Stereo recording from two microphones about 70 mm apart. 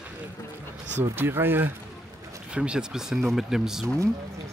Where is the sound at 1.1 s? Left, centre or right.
Right.